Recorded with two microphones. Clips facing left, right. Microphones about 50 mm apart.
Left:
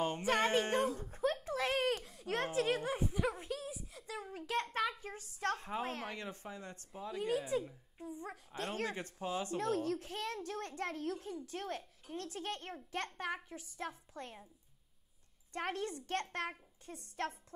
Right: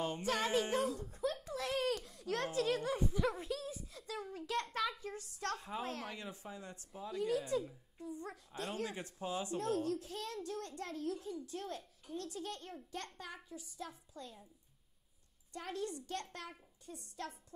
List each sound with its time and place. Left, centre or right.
0.4 s a child's voice: left
1.1 s a sound: left
3.3 s a sound: centre
4.3 s a sound: left
4.9 s speech: left
5.6 s speech: left
8.1 s a woman's voice: centre
8.7 s speech: left
9.6 s a child's voice: left
15.5 s a child's voice: left